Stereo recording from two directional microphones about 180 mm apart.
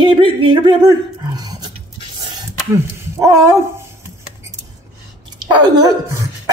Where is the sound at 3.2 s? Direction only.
20° right (ahead or behind).